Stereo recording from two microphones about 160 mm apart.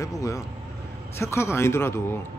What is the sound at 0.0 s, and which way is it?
A man's voice, 20° left (ahead or behind).